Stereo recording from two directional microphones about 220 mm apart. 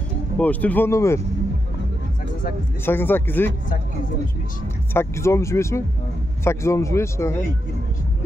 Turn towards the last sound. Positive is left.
turn(degrees=10)  # may be behind; listen again after turning